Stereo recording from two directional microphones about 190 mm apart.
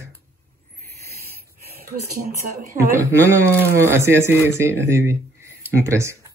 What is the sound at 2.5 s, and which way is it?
Speech, 45° right (ahead or behind).